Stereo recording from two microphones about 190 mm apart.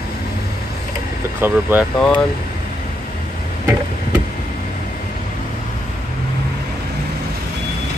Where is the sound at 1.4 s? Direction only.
10° right (ahead or behind).